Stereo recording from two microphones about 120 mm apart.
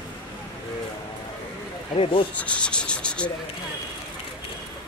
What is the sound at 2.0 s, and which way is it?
Speech, 50° left (ahead or behind).